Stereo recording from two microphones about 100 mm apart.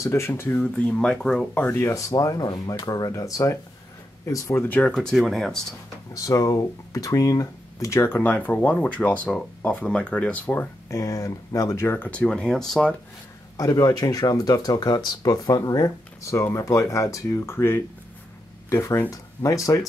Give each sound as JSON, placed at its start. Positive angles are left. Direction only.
{"t": 0.0, "sound": "speech", "side_deg": 30}
{"t": 1.5, "sound": "speech", "side_deg": 20}
{"t": 4.6, "sound": "speech", "side_deg": 15}
{"t": 4.9, "sound": "speech", "side_deg": 5}
{"t": 6.1, "sound": "speech", "side_deg": 35}
{"t": 10.9, "sound": "speech", "side_deg": 30}
{"t": 13.6, "sound": "speech", "side_deg": 35}